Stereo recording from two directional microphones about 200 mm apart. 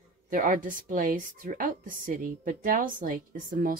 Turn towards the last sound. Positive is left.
turn(degrees=-45)  # may be behind; listen again after turning